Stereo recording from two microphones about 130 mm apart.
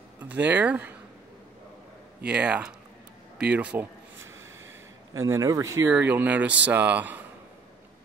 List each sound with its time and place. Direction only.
0.2 s speech: 15° right (ahead or behind)
2.2 s speech: 10° right (ahead or behind)
5.2 s speech: 25° right (ahead or behind)
5.9 s speech: 10° right (ahead or behind)